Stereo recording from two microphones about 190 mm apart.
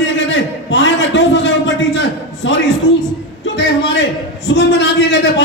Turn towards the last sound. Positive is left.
turn(degrees=65)  # may be behind; listen again after turning